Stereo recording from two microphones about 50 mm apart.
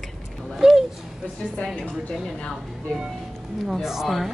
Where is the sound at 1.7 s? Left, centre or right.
Left.